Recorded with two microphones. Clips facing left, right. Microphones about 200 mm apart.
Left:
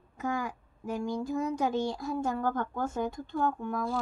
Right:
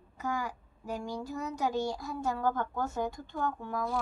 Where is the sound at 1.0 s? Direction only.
50° left (ahead or behind).